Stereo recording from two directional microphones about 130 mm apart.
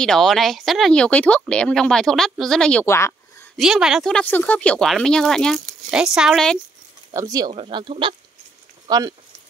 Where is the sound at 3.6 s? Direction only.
5° right (ahead or behind).